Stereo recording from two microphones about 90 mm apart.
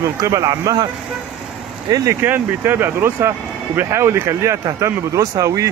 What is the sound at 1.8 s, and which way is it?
Speech, 45° right (ahead or behind).